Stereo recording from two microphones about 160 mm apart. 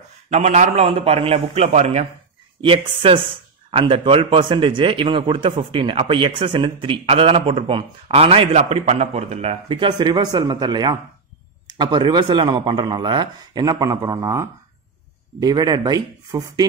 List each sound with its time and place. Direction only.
0.3 s a man's voice: 45° right (ahead or behind)
2.6 s a man's voice: 35° right (ahead or behind)